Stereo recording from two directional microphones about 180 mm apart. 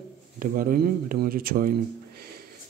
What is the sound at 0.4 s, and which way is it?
Speech, 50° right (ahead or behind).